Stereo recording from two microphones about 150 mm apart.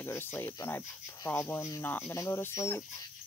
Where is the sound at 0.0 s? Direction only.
15° left (ahead or behind).